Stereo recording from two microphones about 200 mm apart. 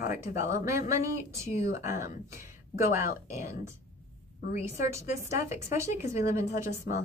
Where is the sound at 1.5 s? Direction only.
35° left (ahead or behind).